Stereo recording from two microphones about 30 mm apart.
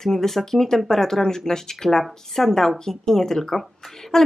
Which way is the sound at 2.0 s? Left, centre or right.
Centre.